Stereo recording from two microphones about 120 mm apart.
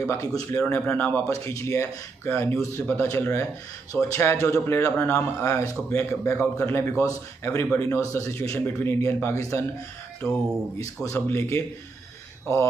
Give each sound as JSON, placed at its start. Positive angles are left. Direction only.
{"t": 0.0, "sound": "a man's voice", "side_deg": 25}
{"t": 1.3, "sound": "a man's voice", "side_deg": 25}
{"t": 10.2, "sound": "speech", "side_deg": 5}
{"t": 11.1, "sound": "a man's voice", "side_deg": 20}